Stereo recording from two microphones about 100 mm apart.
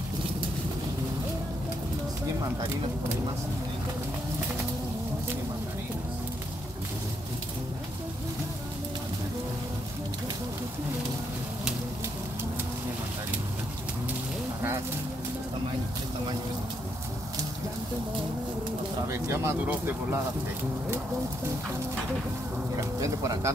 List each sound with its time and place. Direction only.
19.0 s speech: 25° right (ahead or behind)
22.9 s speech: 35° right (ahead or behind)